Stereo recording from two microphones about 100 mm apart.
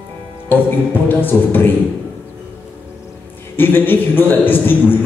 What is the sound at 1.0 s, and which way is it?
Speech, 20° left (ahead or behind).